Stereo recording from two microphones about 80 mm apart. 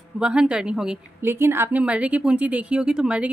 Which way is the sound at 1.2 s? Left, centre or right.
Right.